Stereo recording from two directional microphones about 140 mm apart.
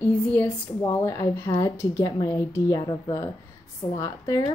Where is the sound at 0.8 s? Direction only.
20° left (ahead or behind).